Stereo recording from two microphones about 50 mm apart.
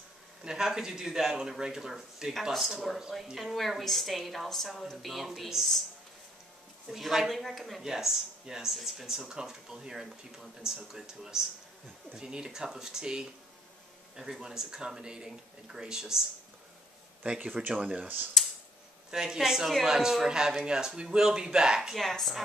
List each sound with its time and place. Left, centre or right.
0.4 s a woman's voice: centre
6.9 s a woman's voice: centre
17.2 s speech: right
18.0 s speech: right
19.0 s speech: centre
21.9 s a woman's voice: centre